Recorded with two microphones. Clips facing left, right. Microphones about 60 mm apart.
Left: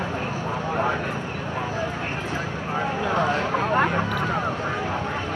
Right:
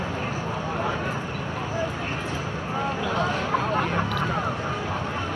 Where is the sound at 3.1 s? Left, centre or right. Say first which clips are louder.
Left 3 dB; left.